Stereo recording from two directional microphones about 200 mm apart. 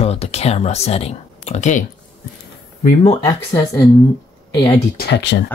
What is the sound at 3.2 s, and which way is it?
Speech, 15° left (ahead or behind).